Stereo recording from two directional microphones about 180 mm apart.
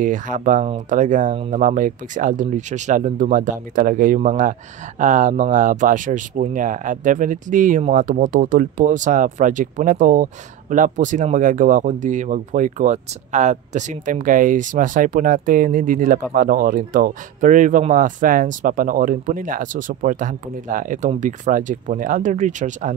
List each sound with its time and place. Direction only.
0.0 s speech: 45° right (ahead or behind)